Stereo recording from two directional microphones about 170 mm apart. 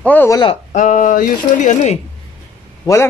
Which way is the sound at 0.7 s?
45° left (ahead or behind).